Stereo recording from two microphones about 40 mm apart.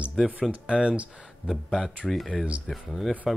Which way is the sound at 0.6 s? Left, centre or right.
Right.